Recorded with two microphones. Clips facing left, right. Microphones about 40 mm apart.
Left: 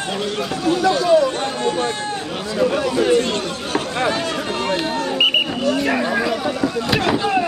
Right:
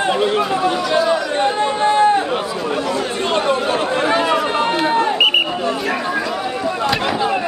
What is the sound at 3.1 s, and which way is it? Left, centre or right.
Chatter, right.